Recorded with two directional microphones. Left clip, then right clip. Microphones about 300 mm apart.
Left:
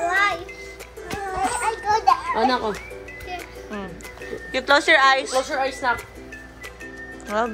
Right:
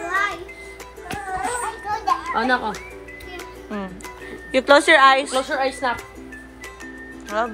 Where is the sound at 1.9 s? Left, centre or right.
Left.